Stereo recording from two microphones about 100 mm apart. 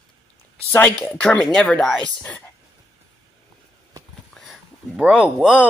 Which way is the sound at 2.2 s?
20° left (ahead or behind).